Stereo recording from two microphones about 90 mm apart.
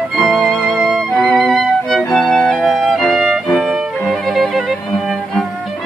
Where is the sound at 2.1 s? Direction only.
Centre (ahead or behind).